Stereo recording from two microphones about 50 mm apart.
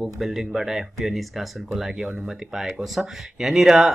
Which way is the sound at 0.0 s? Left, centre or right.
Centre.